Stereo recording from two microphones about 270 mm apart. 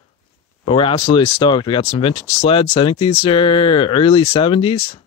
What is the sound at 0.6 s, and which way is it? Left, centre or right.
Speech, centre.